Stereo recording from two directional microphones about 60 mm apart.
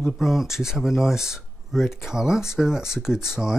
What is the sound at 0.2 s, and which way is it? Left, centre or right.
Speech, centre.